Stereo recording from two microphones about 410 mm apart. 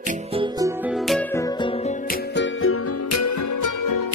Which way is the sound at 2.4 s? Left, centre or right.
Left.